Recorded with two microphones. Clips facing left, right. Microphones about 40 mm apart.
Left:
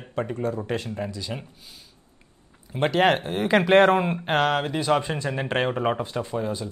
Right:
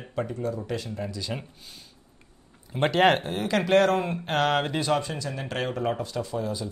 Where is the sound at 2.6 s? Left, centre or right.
Centre.